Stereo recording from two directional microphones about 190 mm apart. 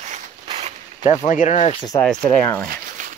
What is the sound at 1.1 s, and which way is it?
Speech, 40° left (ahead or behind).